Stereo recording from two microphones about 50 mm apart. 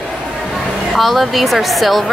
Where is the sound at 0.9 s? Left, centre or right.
Centre.